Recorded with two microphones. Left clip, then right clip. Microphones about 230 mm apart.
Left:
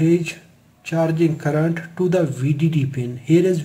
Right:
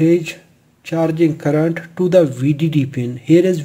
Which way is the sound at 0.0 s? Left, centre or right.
Right.